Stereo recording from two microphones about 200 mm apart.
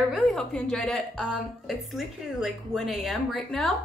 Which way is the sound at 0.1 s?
Centre (ahead or behind).